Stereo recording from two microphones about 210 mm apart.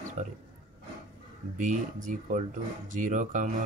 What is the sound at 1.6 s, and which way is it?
Speech, 35° right (ahead or behind).